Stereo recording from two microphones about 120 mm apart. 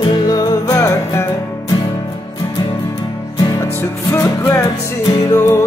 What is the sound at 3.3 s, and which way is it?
Music, 35° left (ahead or behind).